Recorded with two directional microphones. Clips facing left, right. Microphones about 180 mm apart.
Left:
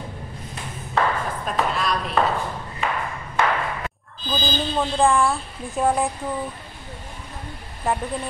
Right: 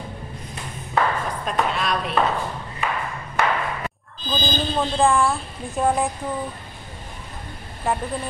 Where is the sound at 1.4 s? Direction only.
Centre (ahead or behind).